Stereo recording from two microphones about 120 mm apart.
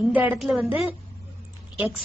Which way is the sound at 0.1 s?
15° right (ahead or behind).